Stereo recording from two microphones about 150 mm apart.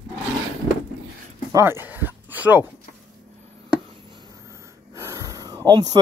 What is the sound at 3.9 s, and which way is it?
Wheeze, 30° right (ahead or behind).